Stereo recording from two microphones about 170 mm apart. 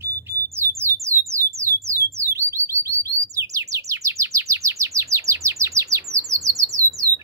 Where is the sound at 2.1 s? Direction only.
15° right (ahead or behind).